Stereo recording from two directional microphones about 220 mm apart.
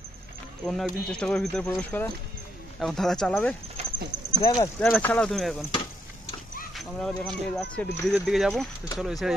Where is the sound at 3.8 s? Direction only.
30° right (ahead or behind).